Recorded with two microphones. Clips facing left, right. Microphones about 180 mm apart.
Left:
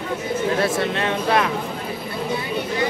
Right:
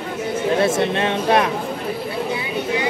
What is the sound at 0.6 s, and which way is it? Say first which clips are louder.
Speech: right 3 dB; 25° right (ahead or behind).